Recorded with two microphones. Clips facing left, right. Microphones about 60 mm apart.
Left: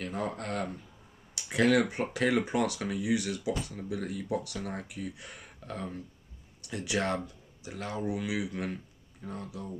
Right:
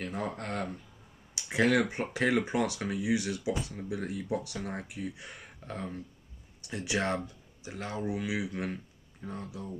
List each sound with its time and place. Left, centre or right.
0.0 s speech: centre
4.0 s speech: centre
8.2 s speech: centre